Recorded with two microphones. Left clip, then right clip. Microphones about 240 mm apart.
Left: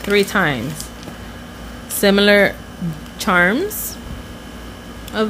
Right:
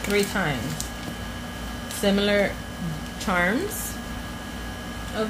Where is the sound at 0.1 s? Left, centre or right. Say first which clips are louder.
Left 9 dB; left.